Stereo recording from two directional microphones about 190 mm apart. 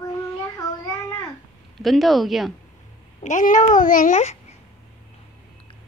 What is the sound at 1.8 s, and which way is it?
Speech, centre (ahead or behind).